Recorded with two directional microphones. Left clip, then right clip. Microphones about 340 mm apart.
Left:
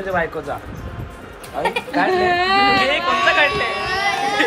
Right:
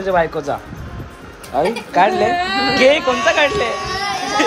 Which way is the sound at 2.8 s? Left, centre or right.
Centre.